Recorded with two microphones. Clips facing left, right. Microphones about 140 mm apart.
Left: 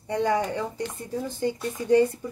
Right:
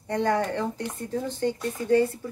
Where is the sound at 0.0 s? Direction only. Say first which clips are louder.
Even; 10° left (ahead or behind).